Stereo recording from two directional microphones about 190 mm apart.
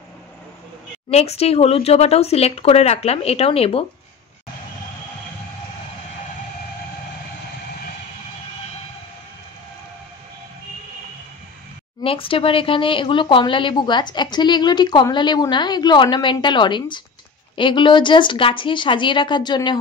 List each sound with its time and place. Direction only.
1.1 s speech: 35° left (ahead or behind)
12.0 s speech: 30° left (ahead or behind)